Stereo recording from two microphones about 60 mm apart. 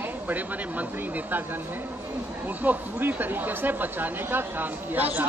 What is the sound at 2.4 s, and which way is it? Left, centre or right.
Speech, right.